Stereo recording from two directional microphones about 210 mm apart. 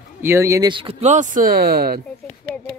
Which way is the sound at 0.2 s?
10° right (ahead or behind).